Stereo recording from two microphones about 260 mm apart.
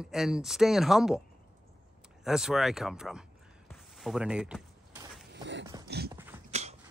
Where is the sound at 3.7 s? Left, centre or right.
Centre.